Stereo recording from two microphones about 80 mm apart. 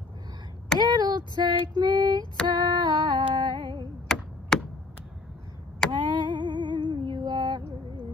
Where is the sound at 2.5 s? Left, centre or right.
Right.